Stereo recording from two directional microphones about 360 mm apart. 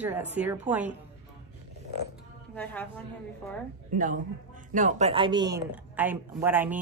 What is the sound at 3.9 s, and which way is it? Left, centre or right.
A man's voice, right.